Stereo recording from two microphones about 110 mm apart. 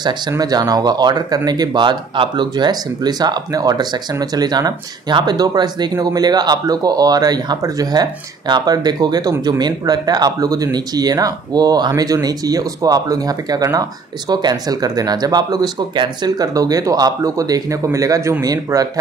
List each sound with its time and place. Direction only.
0.3 s speech: 35° right (ahead or behind)